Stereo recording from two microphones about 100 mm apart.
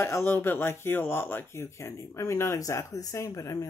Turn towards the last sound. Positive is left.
turn(degrees=35)  # may be behind; listen again after turning